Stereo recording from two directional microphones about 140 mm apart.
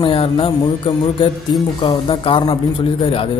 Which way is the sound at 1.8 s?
35° left (ahead or behind).